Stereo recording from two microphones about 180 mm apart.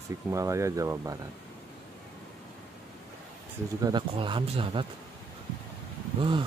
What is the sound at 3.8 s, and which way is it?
Speech, 25° right (ahead or behind).